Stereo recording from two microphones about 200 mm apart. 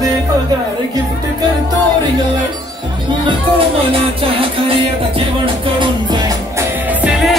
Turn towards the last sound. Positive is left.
turn(degrees=0)  # may be behind; listen again after turning